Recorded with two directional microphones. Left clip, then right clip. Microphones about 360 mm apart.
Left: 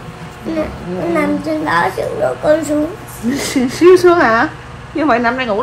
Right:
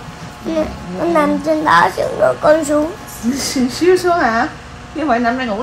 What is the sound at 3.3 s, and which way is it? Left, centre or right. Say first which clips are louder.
A woman's voice: left 2 dB; centre.